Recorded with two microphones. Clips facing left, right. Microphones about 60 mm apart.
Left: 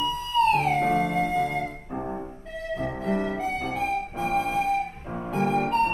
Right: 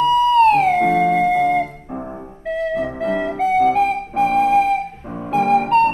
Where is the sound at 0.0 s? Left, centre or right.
Right.